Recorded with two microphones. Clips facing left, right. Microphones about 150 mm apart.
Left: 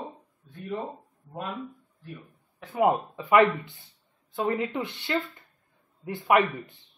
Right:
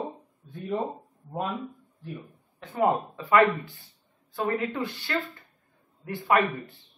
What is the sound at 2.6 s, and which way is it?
Speech, 10° left (ahead or behind).